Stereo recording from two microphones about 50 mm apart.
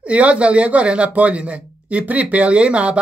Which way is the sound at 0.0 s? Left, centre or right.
Right.